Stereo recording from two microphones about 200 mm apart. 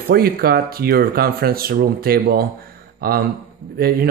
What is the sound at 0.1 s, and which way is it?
Speech, 50° right (ahead or behind).